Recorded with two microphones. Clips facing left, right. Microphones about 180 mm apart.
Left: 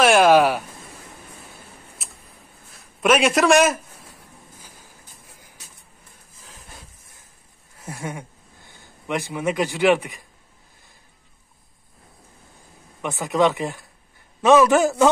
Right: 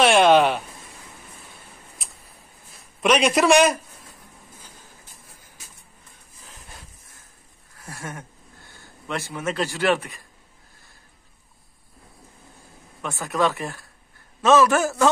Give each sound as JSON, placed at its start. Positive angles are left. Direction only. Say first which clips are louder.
{"t": 0.0, "sound": "speech", "louder": "left 1 dB", "side_deg": 5}
{"t": 2.0, "sound": "a sound", "louder": "left 1 dB", "side_deg": 5}
{"t": 2.7, "sound": "a man's voice", "louder": "left 2 dB", "side_deg": 0}
{"t": 7.8, "sound": "speech", "louder": "left 4 dB", "side_deg": 15}
{"t": 13.0, "sound": "speech", "louder": "left 4 dB", "side_deg": 15}